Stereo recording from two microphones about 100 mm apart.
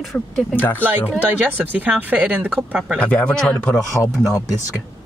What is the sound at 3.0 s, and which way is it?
Speech, 10° left (ahead or behind).